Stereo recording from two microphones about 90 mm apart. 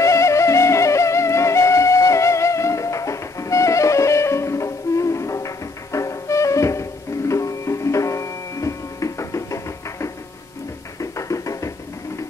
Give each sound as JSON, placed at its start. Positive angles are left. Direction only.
{"t": 0.0, "sound": "music", "side_deg": 35}